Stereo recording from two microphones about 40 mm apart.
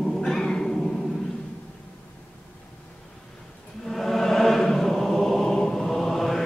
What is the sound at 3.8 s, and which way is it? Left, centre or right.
Chant, centre.